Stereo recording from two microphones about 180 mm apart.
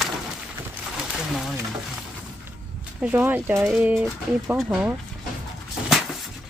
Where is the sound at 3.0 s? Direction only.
10° right (ahead or behind).